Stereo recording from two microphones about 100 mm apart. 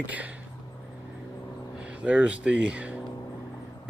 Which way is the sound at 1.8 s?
10° right (ahead or behind).